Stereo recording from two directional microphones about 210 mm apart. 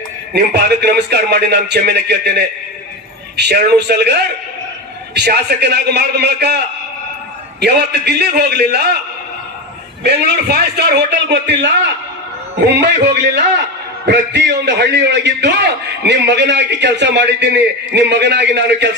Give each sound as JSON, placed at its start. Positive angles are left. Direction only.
{"t": 0.3, "sound": "a man's voice", "side_deg": -50}
{"t": 7.6, "sound": "a man's voice", "side_deg": -50}
{"t": 10.0, "sound": "a man's voice", "side_deg": -50}
{"t": 12.6, "sound": "a man's voice", "side_deg": -55}